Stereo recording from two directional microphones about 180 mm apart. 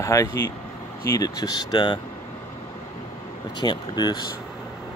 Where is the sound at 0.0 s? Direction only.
15° left (ahead or behind).